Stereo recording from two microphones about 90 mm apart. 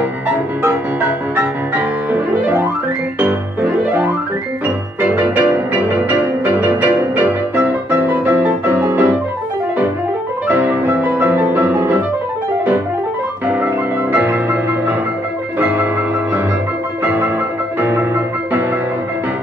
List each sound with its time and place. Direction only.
3.2 s music: 15° right (ahead or behind)
5.1 s music: 20° right (ahead or behind)
8.3 s music: 25° right (ahead or behind)
10.5 s music: 20° right (ahead or behind)
14.1 s music: 20° right (ahead or behind)
17.0 s music: 25° right (ahead or behind)